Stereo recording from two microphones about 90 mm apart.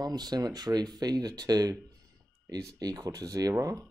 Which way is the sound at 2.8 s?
45° right (ahead or behind).